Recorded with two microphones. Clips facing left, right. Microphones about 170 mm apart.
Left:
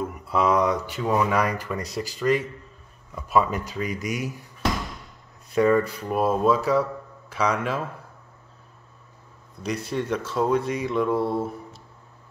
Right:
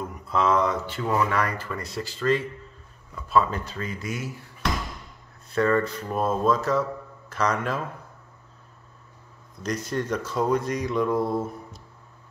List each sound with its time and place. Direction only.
0.3 s speech: 10° left (ahead or behind)
5.5 s speech: 15° left (ahead or behind)
9.8 s speech: 5° left (ahead or behind)